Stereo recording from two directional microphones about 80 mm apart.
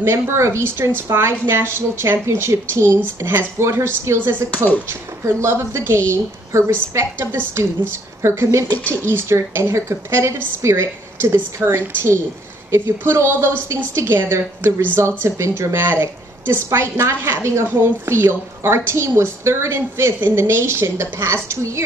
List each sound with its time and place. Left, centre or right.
0.0 s a woman's voice: right
8.6 s speech: left
9.0 s a woman's voice: right